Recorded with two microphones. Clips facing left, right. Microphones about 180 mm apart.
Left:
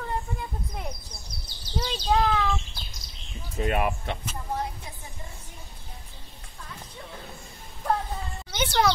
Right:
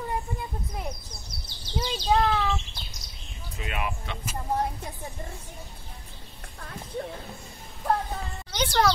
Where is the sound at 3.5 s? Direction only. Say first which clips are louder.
Left 7 dB; 45° left (ahead or behind).